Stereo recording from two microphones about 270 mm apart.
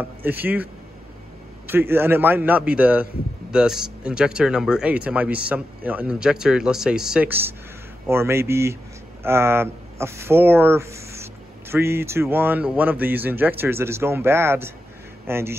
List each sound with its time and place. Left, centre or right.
0.0 s speech: centre
1.7 s speech: centre